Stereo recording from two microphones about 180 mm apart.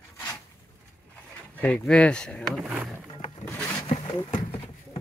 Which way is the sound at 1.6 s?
5° left (ahead or behind).